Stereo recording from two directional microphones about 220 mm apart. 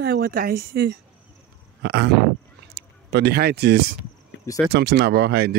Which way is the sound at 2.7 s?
50° right (ahead or behind).